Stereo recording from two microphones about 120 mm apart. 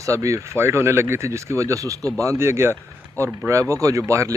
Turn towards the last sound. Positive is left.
turn(degrees=-25)  # may be behind; listen again after turning